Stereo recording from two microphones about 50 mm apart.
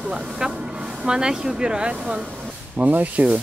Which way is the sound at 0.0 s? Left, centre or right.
Centre.